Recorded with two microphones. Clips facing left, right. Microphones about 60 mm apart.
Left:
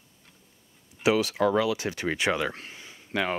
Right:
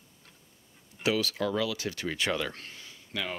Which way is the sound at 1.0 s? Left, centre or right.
Left.